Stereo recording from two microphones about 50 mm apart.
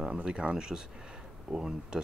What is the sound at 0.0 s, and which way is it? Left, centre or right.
Speech, centre.